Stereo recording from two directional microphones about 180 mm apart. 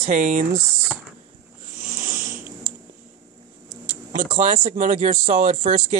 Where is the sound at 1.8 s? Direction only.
50° right (ahead or behind).